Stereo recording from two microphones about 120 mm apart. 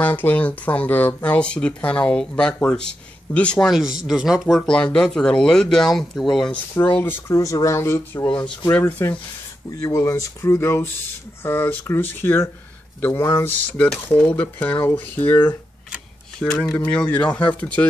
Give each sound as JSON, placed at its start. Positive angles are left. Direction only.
{"t": 0.0, "sound": "speech", "side_deg": 15}
{"t": 3.7, "sound": "speech", "side_deg": -5}
{"t": 6.7, "sound": "speech", "side_deg": 15}
{"t": 8.3, "sound": "speech", "side_deg": 10}
{"t": 9.8, "sound": "speech", "side_deg": 30}